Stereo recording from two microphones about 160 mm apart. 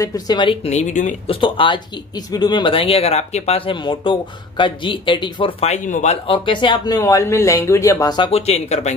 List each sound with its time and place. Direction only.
0.0 s speech: 25° left (ahead or behind)
0.7 s speech: 45° left (ahead or behind)
1.3 s speech: 30° left (ahead or behind); by 6.1 s 45° left (ahead or behind)
6.2 s speech: 30° left (ahead or behind)
8.3 s speech: 40° left (ahead or behind)